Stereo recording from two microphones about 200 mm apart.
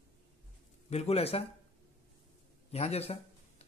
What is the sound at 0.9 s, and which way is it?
Speech, 30° left (ahead or behind).